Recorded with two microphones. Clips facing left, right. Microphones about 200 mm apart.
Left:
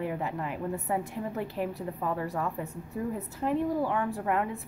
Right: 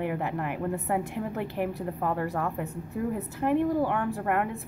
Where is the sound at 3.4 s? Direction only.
65° right (ahead or behind).